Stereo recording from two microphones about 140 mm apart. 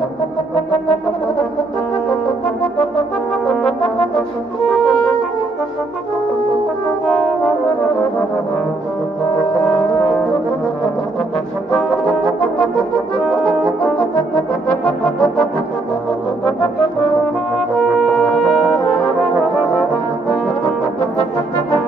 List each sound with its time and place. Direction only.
3.4 s brass instrument: 5° left (ahead or behind)
4.6 s music: centre (ahead or behind)
17.9 s brass instrument: 5° left (ahead or behind)